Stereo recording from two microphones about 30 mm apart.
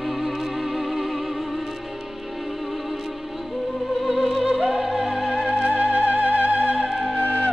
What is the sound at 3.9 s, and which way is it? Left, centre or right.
Music, centre.